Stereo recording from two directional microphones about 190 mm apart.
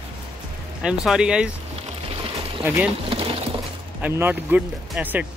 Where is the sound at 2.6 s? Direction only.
10° right (ahead or behind).